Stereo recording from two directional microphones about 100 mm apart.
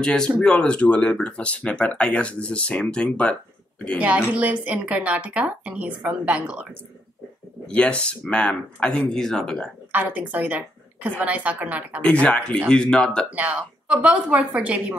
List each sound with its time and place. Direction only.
0.0 s speech: 5° left (ahead or behind)
4.3 s speech: 15° right (ahead or behind)
7.6 s speech: 10° left (ahead or behind)
9.9 s speech: 15° right (ahead or behind)
12.0 s speech: 10° left (ahead or behind)
13.3 s speech: 15° right (ahead or behind)